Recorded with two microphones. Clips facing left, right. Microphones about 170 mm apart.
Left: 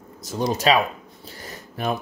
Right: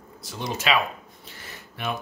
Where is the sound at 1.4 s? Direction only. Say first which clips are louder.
Left 5 dB; 40° left (ahead or behind).